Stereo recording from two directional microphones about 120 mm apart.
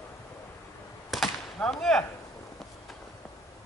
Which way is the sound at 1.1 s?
5° left (ahead or behind).